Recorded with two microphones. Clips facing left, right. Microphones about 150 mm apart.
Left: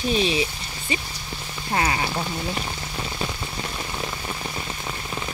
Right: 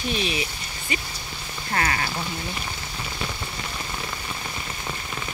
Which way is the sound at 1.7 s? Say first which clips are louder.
Left 2 dB; 20° left (ahead or behind).